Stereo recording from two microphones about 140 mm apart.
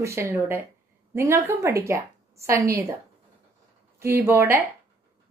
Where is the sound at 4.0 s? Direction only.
15° right (ahead or behind).